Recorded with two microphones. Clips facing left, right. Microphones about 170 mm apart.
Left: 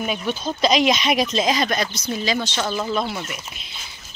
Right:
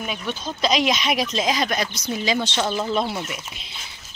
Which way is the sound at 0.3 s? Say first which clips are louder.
Left 3 dB; centre (ahead or behind).